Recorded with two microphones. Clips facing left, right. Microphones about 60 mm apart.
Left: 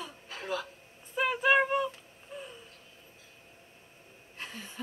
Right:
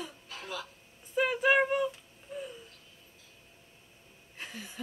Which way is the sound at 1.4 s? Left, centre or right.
Centre.